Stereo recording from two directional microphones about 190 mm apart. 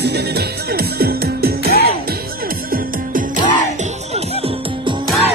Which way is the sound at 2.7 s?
45° right (ahead or behind).